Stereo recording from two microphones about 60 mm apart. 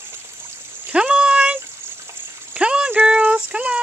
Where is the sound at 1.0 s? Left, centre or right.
Centre.